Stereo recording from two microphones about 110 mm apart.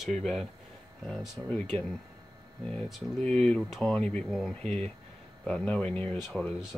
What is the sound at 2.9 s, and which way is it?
Speech, 5° left (ahead or behind).